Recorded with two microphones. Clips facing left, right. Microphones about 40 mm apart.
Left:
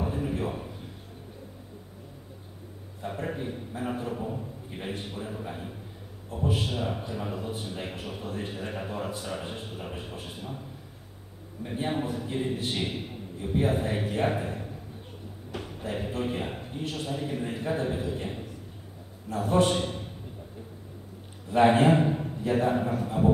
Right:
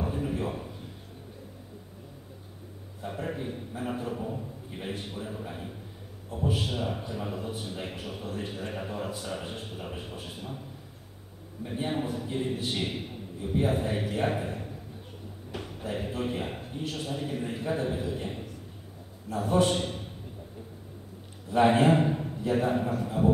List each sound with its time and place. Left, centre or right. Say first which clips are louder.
0.0 s a sound: left 1 dB; centre
3.0 s a man's voice: left 1 dB; centre
11.6 s a man's voice: left 1 dB; centre
19.6 s a man's voice: left 1 dB; centre
21.5 s a man's voice: left 1 dB; centre